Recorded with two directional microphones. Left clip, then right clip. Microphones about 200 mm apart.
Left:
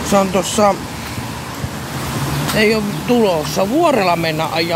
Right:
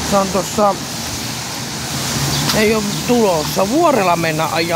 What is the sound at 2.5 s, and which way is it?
Speech, 10° left (ahead or behind).